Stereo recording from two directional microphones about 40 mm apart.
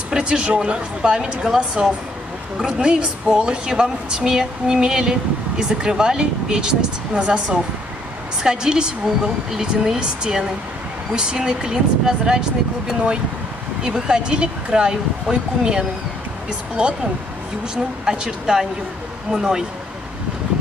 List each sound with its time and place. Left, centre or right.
0.1 s a woman's voice: right
13.8 s a woman's voice: right